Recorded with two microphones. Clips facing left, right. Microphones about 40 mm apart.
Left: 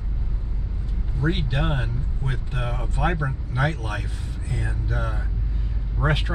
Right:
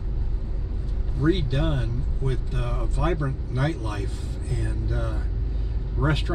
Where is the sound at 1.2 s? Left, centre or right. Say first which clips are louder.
Right 2 dB; left.